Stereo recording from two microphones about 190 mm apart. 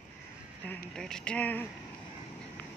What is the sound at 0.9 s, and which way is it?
Speech, 5° left (ahead or behind).